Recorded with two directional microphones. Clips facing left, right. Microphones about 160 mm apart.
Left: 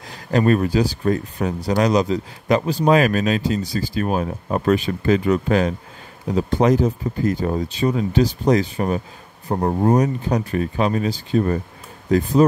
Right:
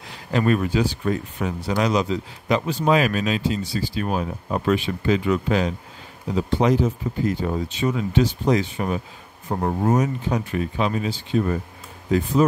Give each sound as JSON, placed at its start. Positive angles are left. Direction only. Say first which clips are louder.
{"t": 0.1, "sound": "speech", "louder": "left 3 dB", "side_deg": 40}